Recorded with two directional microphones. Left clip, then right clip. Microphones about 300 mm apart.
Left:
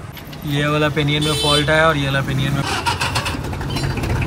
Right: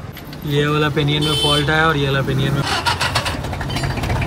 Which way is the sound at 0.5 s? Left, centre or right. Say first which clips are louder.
Right 1 dB; centre.